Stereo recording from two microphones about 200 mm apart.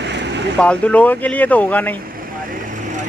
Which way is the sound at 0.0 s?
60° right (ahead or behind).